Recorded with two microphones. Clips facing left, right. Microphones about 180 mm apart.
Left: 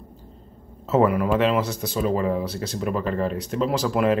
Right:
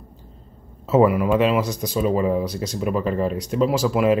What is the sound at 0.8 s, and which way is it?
Speech, 10° right (ahead or behind).